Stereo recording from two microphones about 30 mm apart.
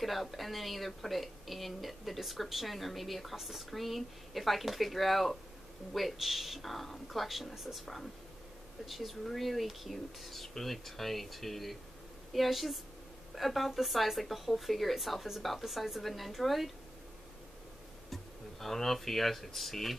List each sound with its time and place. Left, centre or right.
0.0 s speech: centre
7.8 s a woman's voice: centre
18.1 s speech: centre